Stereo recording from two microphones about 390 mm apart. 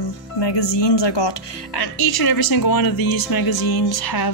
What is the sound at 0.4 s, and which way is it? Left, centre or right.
Speech, left.